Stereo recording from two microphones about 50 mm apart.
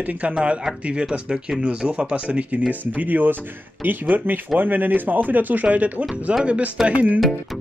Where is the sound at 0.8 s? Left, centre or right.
Centre.